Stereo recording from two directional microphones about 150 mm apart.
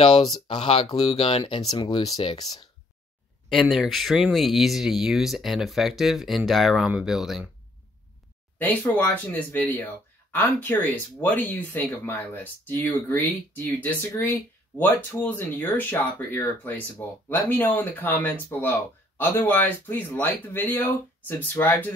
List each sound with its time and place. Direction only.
0.0 s speech: 35° left (ahead or behind)
3.4 s speech: centre (ahead or behind)
8.5 s speech: 10° left (ahead or behind)